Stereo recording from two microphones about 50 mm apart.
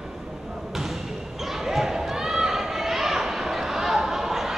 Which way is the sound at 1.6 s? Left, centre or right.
Centre.